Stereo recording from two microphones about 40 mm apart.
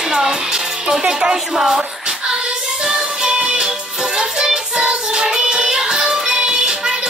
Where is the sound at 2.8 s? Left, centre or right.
Centre.